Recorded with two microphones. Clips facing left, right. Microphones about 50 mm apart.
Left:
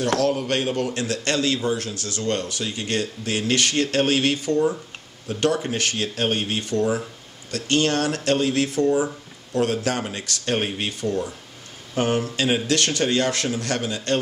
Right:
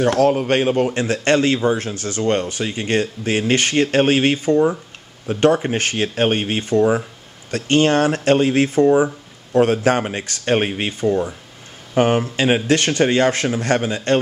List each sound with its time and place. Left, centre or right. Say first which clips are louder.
0.2 s speech: right 6 dB; right